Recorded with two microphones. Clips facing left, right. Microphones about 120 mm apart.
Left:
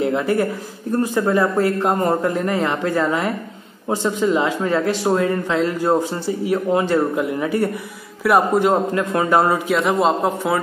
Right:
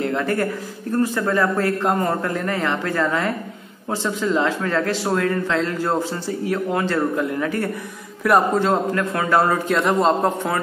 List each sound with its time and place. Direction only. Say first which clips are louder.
0.0 s a man's voice: left 3 dB; 15° left (ahead or behind)
8.5 s speech: left 2 dB; 15° left (ahead or behind)
9.7 s a man's voice: left 1 dB; centre (ahead or behind)